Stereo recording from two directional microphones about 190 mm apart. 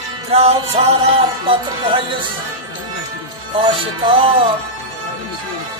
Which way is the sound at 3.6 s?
25° right (ahead or behind).